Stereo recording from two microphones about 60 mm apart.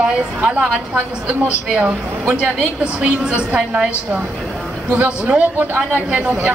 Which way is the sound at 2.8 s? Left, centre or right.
Right.